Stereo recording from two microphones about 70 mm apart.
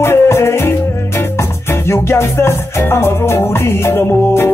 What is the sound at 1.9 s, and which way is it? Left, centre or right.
Music, left.